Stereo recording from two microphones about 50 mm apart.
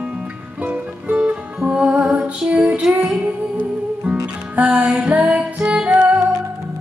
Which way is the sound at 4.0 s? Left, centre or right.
Right.